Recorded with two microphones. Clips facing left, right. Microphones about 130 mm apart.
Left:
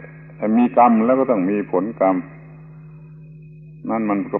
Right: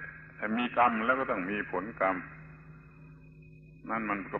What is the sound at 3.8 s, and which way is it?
Speech, 50° left (ahead or behind).